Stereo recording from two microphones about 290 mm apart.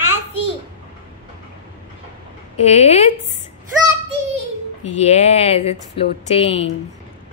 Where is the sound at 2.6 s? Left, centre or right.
Left.